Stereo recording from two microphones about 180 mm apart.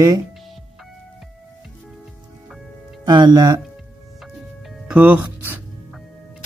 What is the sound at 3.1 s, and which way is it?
Speech, 25° right (ahead or behind).